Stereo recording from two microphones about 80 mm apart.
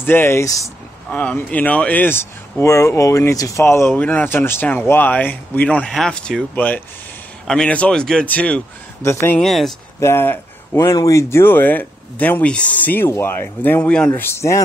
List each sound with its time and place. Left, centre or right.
0.0 s speech: left
0.4 s speech: left
1.1 s speech: centre
2.6 s speech: left
4.0 s speech: left
5.9 s a man's voice: centre
9.0 s speech: left
9.4 s speech: centre
9.9 s speech: left
10.9 s speech: left